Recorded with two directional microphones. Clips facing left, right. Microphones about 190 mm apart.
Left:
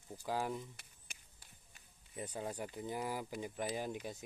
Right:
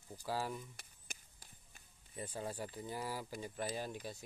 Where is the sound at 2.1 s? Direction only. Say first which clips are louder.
Left 1 dB; 15° left (ahead or behind).